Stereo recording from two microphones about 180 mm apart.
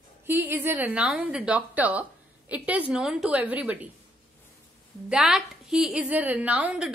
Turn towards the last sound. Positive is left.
turn(degrees=-5)  # may be behind; listen again after turning